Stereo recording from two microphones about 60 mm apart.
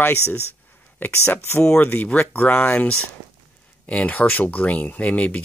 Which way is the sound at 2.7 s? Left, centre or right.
Centre.